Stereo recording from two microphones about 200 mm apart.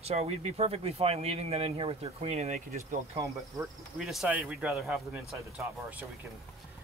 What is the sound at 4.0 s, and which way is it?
Speech, centre (ahead or behind).